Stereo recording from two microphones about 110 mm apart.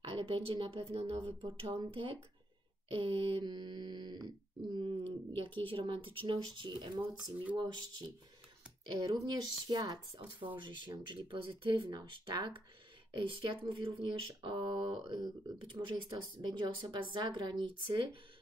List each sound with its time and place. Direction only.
0.1 s speech: 55° right (ahead or behind)
5.7 s speech: 50° right (ahead or behind)